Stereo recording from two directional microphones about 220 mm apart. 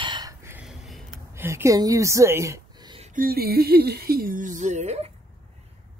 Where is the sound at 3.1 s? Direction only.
45° right (ahead or behind).